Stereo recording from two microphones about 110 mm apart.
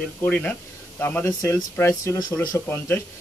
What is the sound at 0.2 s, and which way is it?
Speech, 10° left (ahead or behind).